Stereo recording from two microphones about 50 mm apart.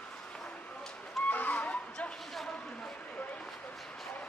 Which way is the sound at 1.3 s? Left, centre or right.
Left.